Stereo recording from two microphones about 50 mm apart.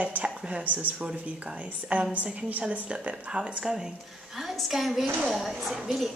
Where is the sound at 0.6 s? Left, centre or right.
Right.